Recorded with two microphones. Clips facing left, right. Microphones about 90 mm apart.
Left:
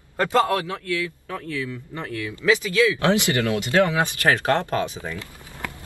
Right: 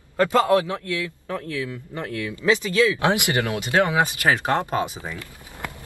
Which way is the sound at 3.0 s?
20° right (ahead or behind).